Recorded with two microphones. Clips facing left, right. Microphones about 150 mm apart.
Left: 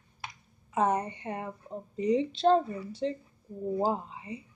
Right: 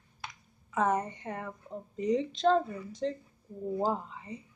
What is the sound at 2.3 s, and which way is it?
Speech, 30° left (ahead or behind).